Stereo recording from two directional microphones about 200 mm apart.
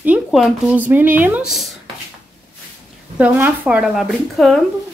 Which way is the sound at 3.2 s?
10° right (ahead or behind).